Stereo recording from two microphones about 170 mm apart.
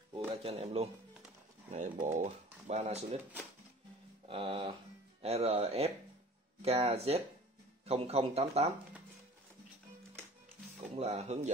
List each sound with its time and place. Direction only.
0.4 s speech: 35° right (ahead or behind)
4.3 s speech: 35° right (ahead or behind)
10.8 s speech: 40° right (ahead or behind)